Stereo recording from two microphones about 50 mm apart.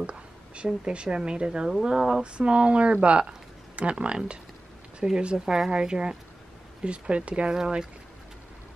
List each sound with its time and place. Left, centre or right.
0.0 s speech: centre
2.3 s speech: right